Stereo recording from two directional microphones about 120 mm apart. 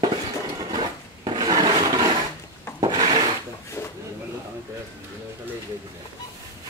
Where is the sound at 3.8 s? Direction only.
20° left (ahead or behind).